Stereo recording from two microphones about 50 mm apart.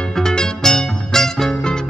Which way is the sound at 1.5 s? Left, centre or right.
Centre.